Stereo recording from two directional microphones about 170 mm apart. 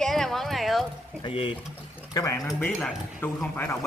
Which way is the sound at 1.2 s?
30° left (ahead or behind).